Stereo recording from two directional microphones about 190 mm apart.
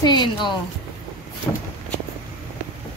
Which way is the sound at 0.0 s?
25° left (ahead or behind).